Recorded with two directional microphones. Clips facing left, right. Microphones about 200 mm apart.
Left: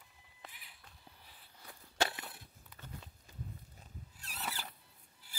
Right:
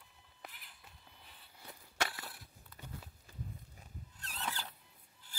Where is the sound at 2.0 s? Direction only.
20° left (ahead or behind).